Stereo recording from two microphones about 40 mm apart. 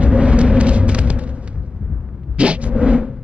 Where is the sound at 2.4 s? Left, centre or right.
Right.